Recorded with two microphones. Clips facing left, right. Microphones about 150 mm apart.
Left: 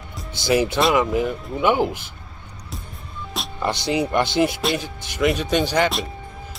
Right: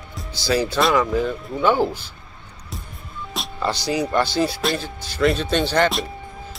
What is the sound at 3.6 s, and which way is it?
Speech, 20° left (ahead or behind).